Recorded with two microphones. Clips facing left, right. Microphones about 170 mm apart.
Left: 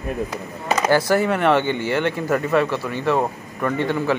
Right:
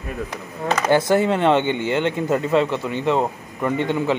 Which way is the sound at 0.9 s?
20° right (ahead or behind).